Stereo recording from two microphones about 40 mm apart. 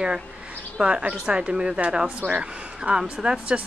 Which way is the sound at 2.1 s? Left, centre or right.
Right.